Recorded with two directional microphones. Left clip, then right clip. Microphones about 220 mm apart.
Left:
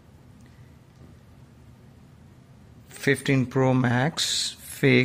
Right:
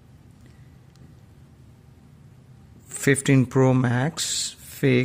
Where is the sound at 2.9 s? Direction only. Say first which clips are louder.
Right 3 dB; 30° right (ahead or behind).